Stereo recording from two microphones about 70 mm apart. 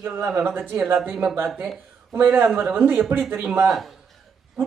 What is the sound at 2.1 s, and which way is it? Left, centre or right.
Speech, right.